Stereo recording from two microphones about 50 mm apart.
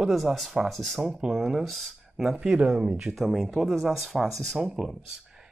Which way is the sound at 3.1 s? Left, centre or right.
Centre.